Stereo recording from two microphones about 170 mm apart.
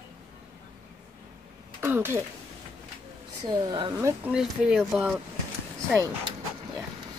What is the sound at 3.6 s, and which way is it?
Speech, 25° right (ahead or behind).